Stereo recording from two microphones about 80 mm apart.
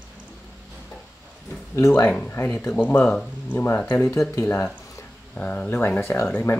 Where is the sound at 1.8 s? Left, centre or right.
Left.